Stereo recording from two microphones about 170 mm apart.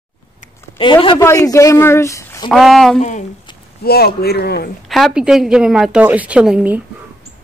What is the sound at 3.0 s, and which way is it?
Speech, 45° left (ahead or behind).